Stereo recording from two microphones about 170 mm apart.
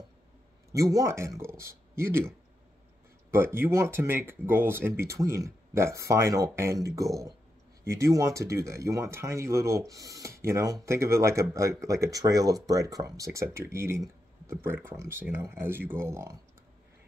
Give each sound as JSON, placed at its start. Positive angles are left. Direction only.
{"t": 0.7, "sound": "speech", "side_deg": -20}